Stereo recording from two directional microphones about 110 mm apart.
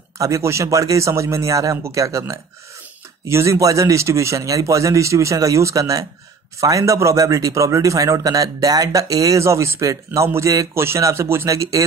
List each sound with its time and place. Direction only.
0.2 s a man's voice: 25° right (ahead or behind)